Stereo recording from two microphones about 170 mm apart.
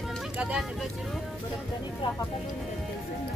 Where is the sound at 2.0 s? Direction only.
30° left (ahead or behind).